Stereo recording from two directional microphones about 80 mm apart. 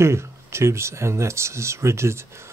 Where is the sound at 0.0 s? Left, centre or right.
Right.